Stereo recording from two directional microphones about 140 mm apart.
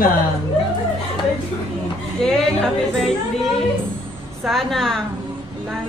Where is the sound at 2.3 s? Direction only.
5° left (ahead or behind).